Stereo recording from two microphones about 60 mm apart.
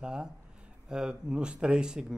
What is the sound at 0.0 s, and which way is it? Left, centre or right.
Speech, centre.